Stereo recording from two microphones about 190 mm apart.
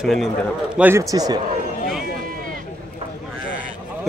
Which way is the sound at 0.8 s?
10° right (ahead or behind).